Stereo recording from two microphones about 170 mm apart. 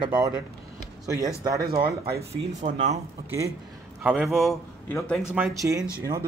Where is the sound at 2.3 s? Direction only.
45° right (ahead or behind).